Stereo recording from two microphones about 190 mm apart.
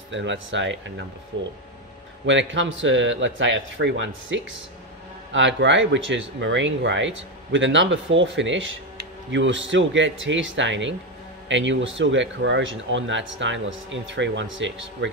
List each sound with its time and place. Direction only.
0.1 s speech: 75° right (ahead or behind)
2.2 s a man's voice: 75° right (ahead or behind)